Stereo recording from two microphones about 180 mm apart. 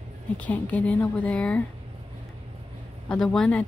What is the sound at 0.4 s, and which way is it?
Speech, 10° left (ahead or behind).